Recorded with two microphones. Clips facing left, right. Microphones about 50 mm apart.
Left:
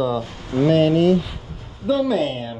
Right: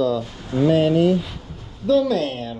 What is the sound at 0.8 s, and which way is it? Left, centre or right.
Speech, left.